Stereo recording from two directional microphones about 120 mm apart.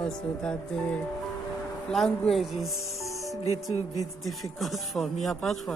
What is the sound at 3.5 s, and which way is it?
Music, 30° right (ahead or behind).